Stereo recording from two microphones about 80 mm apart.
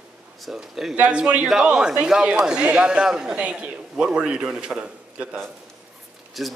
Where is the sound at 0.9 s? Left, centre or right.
Centre.